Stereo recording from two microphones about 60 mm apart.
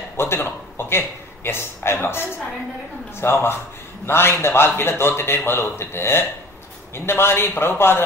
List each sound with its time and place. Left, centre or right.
0.2 s a man's voice: left